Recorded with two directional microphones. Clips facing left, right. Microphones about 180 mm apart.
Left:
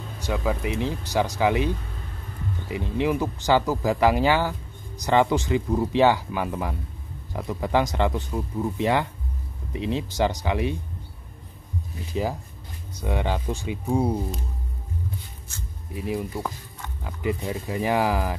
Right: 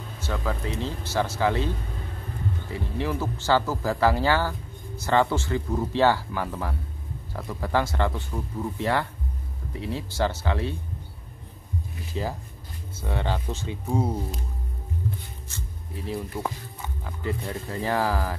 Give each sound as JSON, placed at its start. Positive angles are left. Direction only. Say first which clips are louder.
{"t": 0.2, "sound": "speech", "louder": "left 4 dB", "side_deg": 15}
{"t": 2.7, "sound": "speech", "louder": "left 6 dB", "side_deg": 15}
{"t": 12.1, "sound": "speech", "louder": "left 4 dB", "side_deg": 15}
{"t": 15.9, "sound": "speech", "louder": "left 3 dB", "side_deg": 15}